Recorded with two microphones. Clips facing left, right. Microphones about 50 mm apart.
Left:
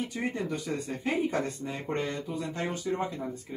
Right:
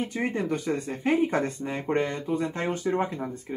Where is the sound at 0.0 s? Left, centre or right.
Right.